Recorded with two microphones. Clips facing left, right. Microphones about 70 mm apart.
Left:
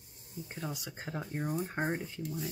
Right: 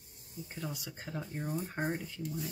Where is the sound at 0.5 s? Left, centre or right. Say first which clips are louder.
Left 1 dB; left.